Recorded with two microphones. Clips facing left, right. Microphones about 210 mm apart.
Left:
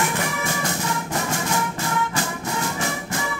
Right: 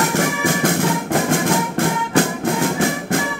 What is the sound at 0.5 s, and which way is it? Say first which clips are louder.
Music: right 8 dB; 55° right (ahead or behind).